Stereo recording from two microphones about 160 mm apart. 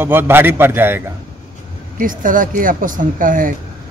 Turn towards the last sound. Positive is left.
turn(degrees=-60)  # may be behind; listen again after turning